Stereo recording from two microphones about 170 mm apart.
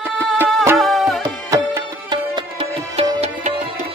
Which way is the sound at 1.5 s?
20° right (ahead or behind).